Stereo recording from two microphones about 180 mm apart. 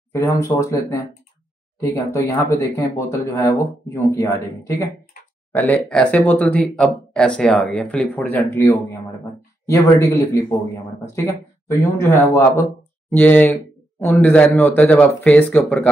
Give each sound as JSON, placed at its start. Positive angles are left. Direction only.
{"t": 0.1, "sound": "speech", "side_deg": 15}